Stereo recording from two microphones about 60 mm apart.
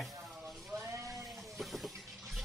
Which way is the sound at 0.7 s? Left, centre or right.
Right.